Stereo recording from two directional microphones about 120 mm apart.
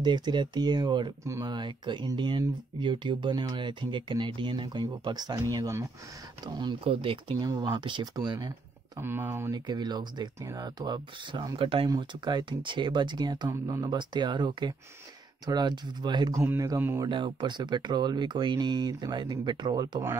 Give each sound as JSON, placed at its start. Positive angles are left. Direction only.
{"t": 0.0, "sound": "speech", "side_deg": -40}
{"t": 1.2, "sound": "speech", "side_deg": -25}
{"t": 1.5, "sound": "speech", "side_deg": -40}
{"t": 6.8, "sound": "speech", "side_deg": -50}
{"t": 7.3, "sound": "speech", "side_deg": -35}
{"t": 9.0, "sound": "speech", "side_deg": -20}
{"t": 9.5, "sound": "speech", "side_deg": -35}
{"t": 16.3, "sound": "speech", "side_deg": -25}
{"t": 17.0, "sound": "speech", "side_deg": -40}